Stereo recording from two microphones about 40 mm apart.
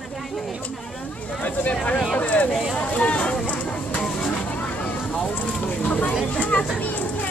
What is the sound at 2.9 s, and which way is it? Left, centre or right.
Speech, left.